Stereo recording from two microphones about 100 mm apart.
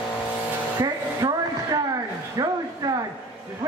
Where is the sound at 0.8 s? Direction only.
40° right (ahead or behind).